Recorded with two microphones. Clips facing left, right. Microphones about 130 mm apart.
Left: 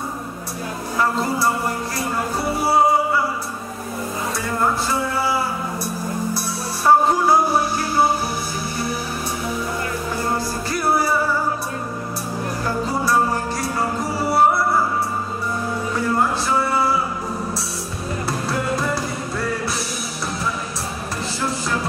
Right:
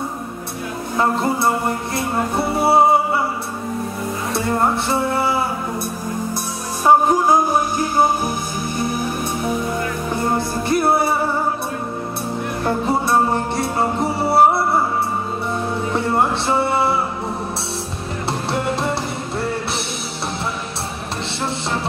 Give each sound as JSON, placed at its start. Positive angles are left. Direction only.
{"t": 0.9, "sound": "music", "side_deg": -25}
{"t": 4.8, "sound": "music", "side_deg": -25}
{"t": 6.9, "sound": "music", "side_deg": -15}
{"t": 10.1, "sound": "music", "side_deg": -20}
{"t": 13.0, "sound": "music", "side_deg": -25}
{"t": 15.9, "sound": "music", "side_deg": -25}
{"t": 18.3, "sound": "music", "side_deg": -25}
{"t": 21.4, "sound": "music", "side_deg": -25}